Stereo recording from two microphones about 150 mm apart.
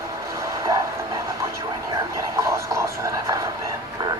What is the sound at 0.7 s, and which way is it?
Train, 20° right (ahead or behind).